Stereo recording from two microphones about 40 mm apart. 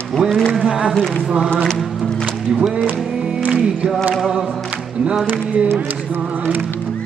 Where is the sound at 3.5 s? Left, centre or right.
Centre.